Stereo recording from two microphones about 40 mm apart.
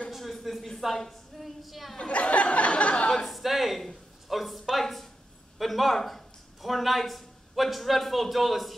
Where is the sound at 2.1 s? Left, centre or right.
Left.